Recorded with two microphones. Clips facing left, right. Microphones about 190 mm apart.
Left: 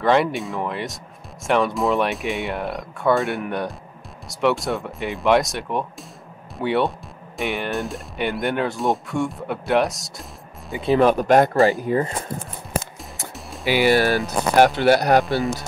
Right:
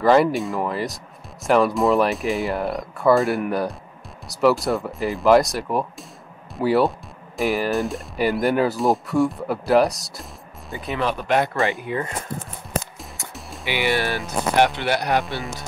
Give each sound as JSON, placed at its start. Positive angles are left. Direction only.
{"t": 0.0, "sound": "speech", "side_deg": 0}
{"t": 11.0, "sound": "speech", "side_deg": 45}
{"t": 13.7, "sound": "speech", "side_deg": 40}